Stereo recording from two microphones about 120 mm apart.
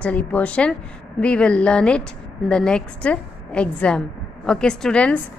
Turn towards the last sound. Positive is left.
turn(degrees=10)  # may be behind; listen again after turning